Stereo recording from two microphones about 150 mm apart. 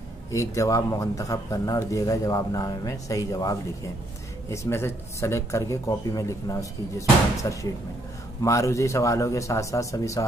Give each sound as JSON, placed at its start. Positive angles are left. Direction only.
{"t": 0.3, "sound": "speech", "side_deg": 20}